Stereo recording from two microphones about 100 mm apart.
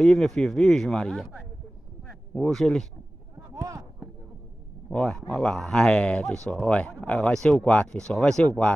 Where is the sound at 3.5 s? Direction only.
35° right (ahead or behind).